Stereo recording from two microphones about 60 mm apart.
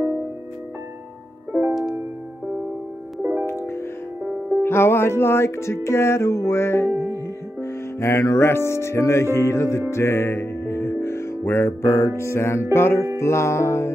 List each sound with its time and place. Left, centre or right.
1.5 s music: right
3.2 s music: right
3.4 s music: left
4.2 s music: right
4.6 s music: left